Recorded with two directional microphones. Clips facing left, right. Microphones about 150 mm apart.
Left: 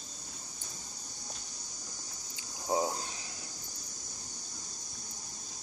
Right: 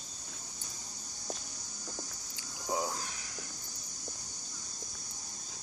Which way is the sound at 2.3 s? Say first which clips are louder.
Left 4 dB; 25° left (ahead or behind).